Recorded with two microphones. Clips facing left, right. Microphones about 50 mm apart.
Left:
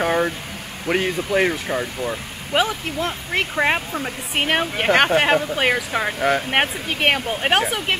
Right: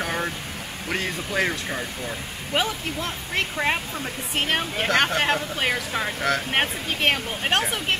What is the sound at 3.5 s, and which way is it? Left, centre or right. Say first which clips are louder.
Speech: left 7 dB; left.